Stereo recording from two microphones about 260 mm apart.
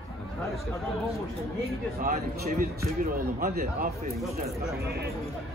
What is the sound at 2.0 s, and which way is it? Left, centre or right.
A man's voice, right.